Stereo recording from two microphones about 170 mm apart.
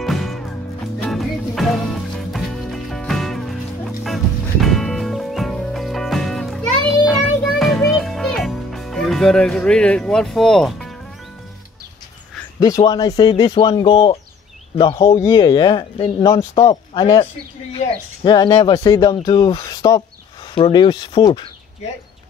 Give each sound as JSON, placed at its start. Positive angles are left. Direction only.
{"t": 0.0, "sound": "music", "side_deg": 0}
{"t": 12.5, "sound": "speech", "side_deg": 20}
{"t": 15.0, "sound": "speech", "side_deg": 15}